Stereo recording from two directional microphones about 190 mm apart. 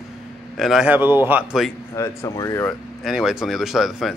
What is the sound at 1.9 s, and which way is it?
Speech, 15° left (ahead or behind).